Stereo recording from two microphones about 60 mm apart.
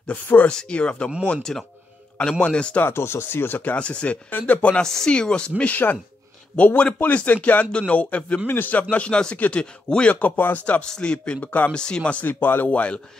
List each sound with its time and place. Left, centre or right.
0.0 s speech: left
0.5 s speech: centre
2.8 s speech: left
3.7 s speech: centre
4.8 s speech: centre
5.6 s speech: left
8.9 s speech: centre
10.1 s speech: left
11.7 s speech: centre